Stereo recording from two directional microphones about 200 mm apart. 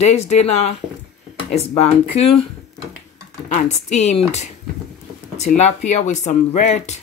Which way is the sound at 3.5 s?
35° left (ahead or behind).